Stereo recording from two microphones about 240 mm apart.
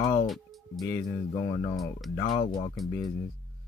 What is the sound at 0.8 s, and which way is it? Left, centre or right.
Speech, centre.